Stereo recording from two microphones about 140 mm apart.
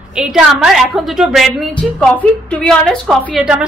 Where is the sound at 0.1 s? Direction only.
5° right (ahead or behind).